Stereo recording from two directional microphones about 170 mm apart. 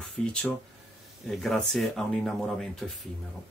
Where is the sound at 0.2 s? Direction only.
5° left (ahead or behind).